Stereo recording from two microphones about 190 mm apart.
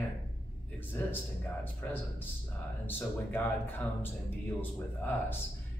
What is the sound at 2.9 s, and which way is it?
Speech, 10° left (ahead or behind).